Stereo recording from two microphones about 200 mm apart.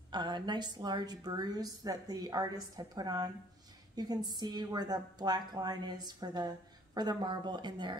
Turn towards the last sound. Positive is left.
turn(degrees=-20)  # may be behind; listen again after turning